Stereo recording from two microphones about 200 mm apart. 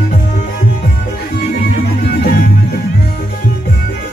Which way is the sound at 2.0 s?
50° left (ahead or behind).